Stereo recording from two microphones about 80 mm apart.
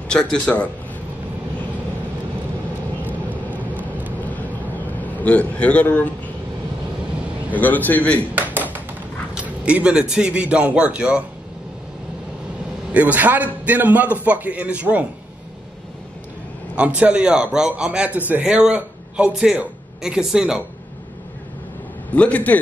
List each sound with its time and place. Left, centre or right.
0.1 s speech: centre
5.1 s speech: centre
7.6 s a man's voice: left
8.4 s tap: right
9.3 s a man's voice: centre
12.9 s a man's voice: centre
16.7 s a man's voice: centre
22.1 s a man's voice: centre